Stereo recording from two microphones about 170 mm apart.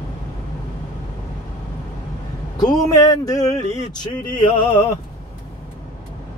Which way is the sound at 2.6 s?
20° left (ahead or behind).